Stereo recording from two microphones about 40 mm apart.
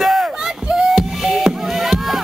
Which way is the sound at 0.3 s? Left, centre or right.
Centre.